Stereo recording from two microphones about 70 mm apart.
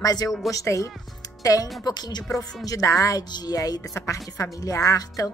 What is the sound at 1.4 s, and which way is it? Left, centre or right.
Speech, left.